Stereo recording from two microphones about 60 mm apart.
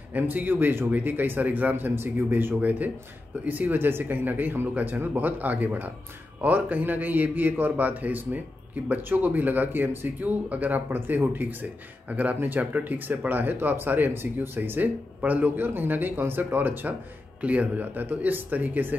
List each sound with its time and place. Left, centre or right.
0.1 s speech: right